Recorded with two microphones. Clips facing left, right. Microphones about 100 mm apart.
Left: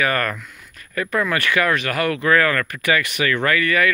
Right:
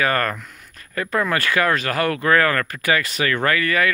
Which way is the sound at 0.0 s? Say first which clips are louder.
Right 1 dB; 30° right (ahead or behind).